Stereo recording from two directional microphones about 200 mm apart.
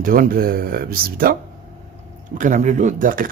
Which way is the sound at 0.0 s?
45° right (ahead or behind).